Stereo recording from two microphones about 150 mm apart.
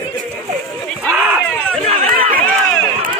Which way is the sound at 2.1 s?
70° right (ahead or behind).